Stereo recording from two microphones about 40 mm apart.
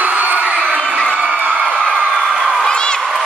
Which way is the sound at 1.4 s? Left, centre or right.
Right.